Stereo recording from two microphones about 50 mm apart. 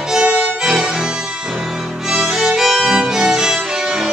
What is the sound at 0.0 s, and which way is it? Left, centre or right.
Music, centre.